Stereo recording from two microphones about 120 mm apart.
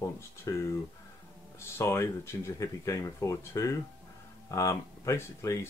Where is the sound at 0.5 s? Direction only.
30° left (ahead or behind).